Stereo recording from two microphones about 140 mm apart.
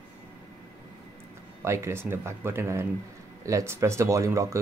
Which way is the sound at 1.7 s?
20° right (ahead or behind).